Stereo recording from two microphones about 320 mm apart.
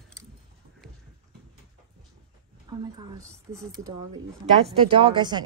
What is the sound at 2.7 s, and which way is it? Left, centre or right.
Speech, centre.